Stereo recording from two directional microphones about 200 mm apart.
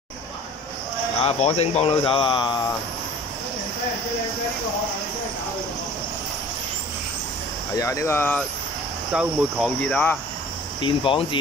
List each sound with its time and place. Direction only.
1.2 s speech: 30° left (ahead or behind)
7.8 s speech: 15° left (ahead or behind)
9.1 s cricket: centre (ahead or behind)
10.8 s speech: 25° left (ahead or behind)